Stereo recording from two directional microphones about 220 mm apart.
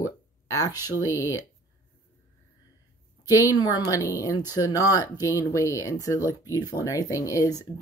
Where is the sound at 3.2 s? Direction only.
15° left (ahead or behind).